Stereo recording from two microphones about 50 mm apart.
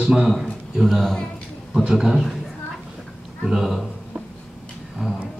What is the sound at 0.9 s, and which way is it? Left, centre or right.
Speech, centre.